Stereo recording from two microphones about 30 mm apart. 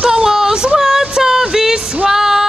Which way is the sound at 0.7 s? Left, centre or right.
Centre.